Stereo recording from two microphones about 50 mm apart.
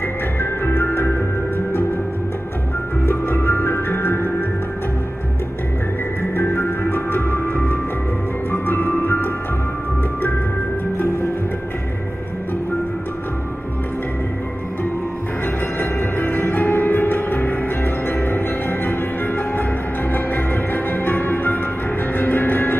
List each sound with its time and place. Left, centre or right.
0.4 s music: left
3.1 s music: left
6.3 s music: left
6.9 s music: left
15.8 s music: left